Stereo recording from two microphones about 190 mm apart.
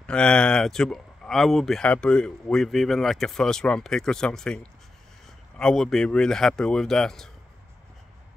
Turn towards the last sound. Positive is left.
turn(degrees=0)  # may be behind; listen again after turning